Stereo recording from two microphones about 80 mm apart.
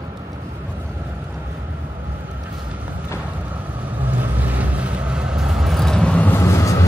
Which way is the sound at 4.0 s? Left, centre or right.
Right.